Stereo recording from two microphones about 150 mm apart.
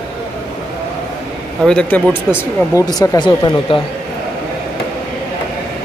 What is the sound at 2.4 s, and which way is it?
Speech, 25° left (ahead or behind).